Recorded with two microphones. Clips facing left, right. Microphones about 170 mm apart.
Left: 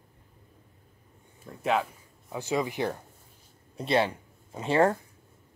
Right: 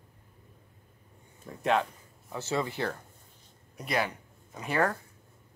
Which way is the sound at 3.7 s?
30° left (ahead or behind).